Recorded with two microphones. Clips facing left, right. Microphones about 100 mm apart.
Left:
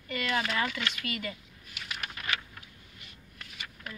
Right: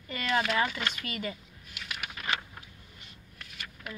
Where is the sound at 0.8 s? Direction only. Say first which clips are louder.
Even; 30° right (ahead or behind).